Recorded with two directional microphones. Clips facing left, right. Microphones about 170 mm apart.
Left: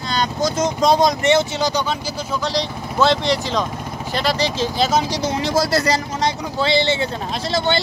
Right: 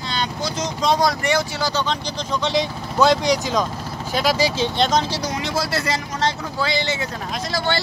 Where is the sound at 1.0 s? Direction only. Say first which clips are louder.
Left 4 dB; 20° left (ahead or behind).